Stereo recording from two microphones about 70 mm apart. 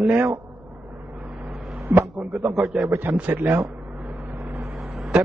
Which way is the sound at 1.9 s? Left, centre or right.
Right.